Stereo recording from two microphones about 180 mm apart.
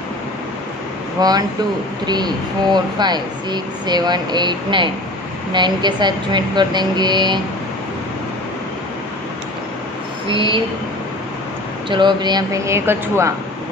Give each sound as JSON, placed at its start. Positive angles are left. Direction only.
{"t": 1.2, "sound": "speech", "side_deg": -20}
{"t": 10.2, "sound": "speech", "side_deg": -30}
{"t": 11.9, "sound": "speech", "side_deg": -25}